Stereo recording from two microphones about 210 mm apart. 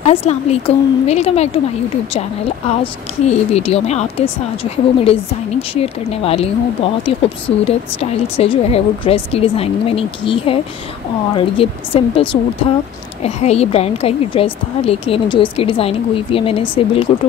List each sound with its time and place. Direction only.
0.0 s speech: 30° left (ahead or behind)
2.8 s speech: 30° left (ahead or behind)